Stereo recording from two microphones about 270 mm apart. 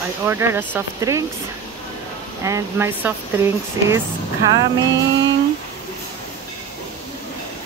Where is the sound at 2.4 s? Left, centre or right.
Centre.